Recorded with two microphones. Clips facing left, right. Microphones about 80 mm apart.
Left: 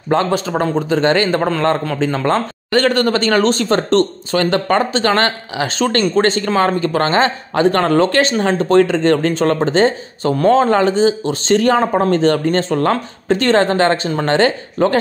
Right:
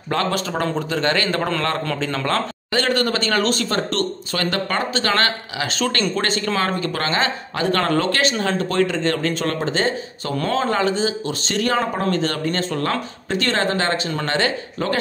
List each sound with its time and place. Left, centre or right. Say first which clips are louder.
0.1 s a man's voice: left 6 dB; left
2.7 s speech: left 6 dB; left